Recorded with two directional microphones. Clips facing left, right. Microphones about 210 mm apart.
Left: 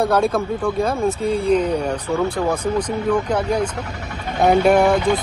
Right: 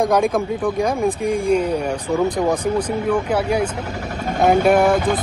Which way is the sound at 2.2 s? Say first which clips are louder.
Right 3 dB; 20° right (ahead or behind).